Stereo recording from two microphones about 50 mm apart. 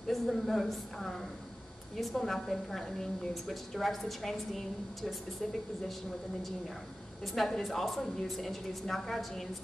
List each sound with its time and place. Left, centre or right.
0.1 s a woman's voice: centre
7.3 s a woman's voice: centre